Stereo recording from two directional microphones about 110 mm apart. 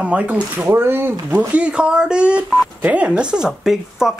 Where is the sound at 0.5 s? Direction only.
20° right (ahead or behind).